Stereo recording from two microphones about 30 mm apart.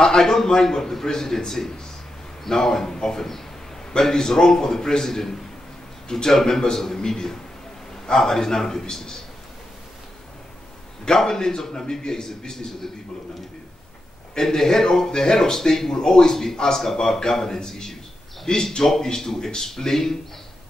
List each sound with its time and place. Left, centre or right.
0.2 s a man's voice: centre
11.2 s a man's voice: left
12.3 s a man's voice: centre
14.3 s a man's voice: centre